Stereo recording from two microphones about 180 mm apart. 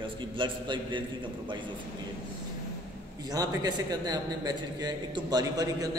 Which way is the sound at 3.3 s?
20° right (ahead or behind).